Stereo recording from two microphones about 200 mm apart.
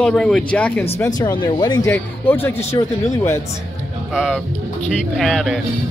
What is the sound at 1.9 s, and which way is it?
Speech, 10° left (ahead or behind).